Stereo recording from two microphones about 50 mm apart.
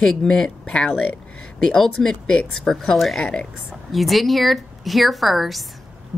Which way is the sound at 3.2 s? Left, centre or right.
Centre.